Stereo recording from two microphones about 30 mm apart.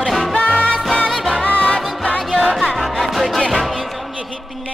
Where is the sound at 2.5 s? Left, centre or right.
Centre.